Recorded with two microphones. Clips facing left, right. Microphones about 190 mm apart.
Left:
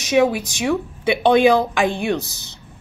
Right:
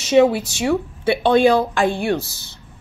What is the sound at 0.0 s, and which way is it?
Speech, 15° left (ahead or behind).